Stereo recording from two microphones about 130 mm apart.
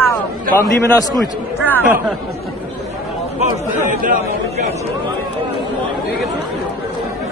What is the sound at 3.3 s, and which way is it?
Speech, 90° right.